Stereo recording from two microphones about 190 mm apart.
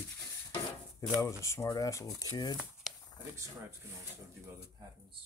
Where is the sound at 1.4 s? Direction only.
15° left (ahead or behind).